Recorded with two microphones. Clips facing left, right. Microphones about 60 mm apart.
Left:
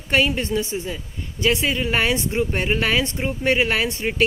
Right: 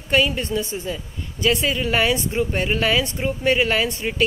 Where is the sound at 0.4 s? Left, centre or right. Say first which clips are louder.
Left 1 dB; left.